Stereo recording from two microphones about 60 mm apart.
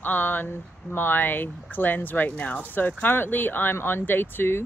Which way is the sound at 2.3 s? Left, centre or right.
Centre.